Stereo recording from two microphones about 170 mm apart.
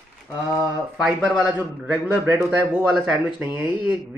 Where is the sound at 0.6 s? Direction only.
5° right (ahead or behind).